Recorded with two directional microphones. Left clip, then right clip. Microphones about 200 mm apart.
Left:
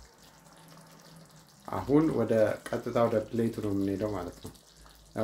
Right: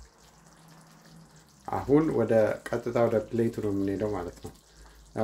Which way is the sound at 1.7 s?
20° right (ahead or behind).